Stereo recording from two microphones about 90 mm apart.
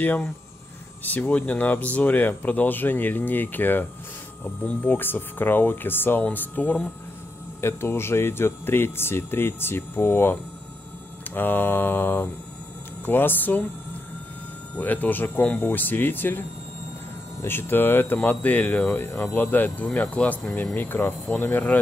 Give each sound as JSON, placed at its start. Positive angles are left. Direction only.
{"t": 0.0, "sound": "speech", "side_deg": 20}
{"t": 7.6, "sound": "speech", "side_deg": 30}
{"t": 14.8, "sound": "speech", "side_deg": 20}